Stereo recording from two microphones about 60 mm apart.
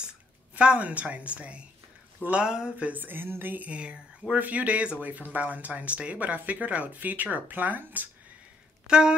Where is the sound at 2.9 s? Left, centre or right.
Right.